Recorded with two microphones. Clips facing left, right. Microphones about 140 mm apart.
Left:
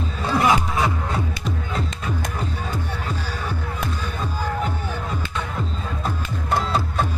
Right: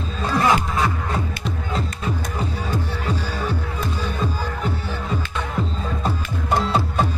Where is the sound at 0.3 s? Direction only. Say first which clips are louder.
Even; 10° left (ahead or behind).